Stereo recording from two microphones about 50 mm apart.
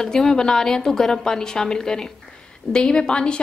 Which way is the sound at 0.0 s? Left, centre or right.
Centre.